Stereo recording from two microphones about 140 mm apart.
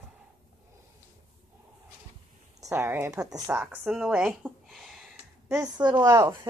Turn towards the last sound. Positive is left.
turn(degrees=-25)  # may be behind; listen again after turning